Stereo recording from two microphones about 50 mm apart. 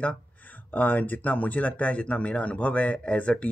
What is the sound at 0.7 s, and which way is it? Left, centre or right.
Speech, left.